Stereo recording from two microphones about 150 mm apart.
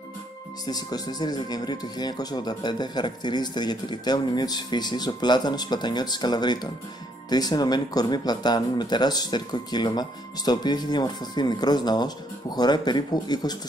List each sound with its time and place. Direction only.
0.7 s speech: 25° left (ahead or behind)